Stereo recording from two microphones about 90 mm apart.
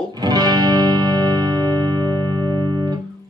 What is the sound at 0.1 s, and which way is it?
Music, 50° right (ahead or behind).